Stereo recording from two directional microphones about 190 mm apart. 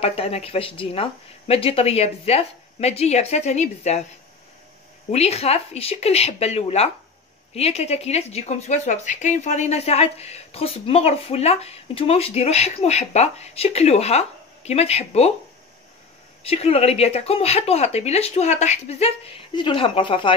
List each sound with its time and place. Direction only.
0.0 s a woman's voice: 30° left (ahead or behind)
5.1 s a woman's voice: 35° left (ahead or behind)
16.4 s a woman's voice: 30° left (ahead or behind)